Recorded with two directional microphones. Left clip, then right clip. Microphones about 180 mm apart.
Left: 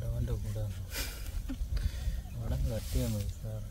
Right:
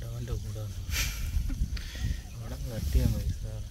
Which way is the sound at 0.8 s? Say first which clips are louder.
Right 9 dB; 40° left (ahead or behind).